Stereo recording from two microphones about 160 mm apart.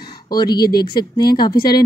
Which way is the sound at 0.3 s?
25° left (ahead or behind).